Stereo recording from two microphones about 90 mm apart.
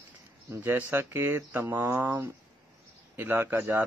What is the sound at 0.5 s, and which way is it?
Speech, 25° right (ahead or behind).